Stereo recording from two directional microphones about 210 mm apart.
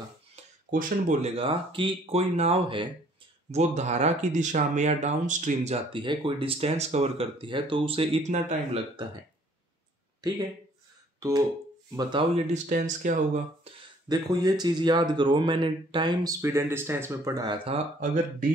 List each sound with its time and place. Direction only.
0.7 s speech: 40° right (ahead or behind)
10.2 s speech: 20° right (ahead or behind)
11.1 s a sound: 15° right (ahead or behind)
11.9 s speech: 20° right (ahead or behind)